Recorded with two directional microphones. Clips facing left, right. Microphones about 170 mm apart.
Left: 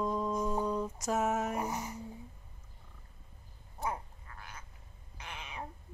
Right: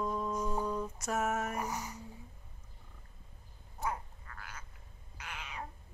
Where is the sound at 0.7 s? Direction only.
15° left (ahead or behind).